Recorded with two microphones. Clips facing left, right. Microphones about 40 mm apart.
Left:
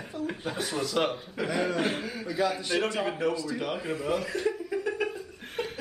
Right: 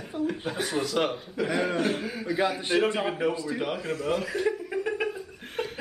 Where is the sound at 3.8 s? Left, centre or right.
Centre.